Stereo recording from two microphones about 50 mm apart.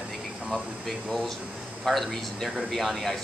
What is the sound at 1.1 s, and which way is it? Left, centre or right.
Speech, centre.